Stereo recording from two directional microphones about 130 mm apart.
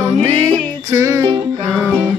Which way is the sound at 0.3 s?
25° right (ahead or behind).